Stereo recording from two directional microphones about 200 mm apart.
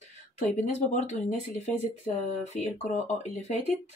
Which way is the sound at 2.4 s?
35° left (ahead or behind).